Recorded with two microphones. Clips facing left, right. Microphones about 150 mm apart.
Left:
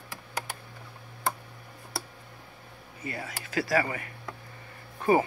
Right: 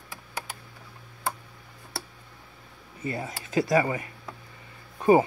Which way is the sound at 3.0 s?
25° right (ahead or behind).